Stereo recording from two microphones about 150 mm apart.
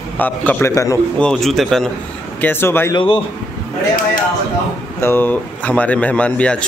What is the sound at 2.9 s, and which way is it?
Speech, 35° left (ahead or behind).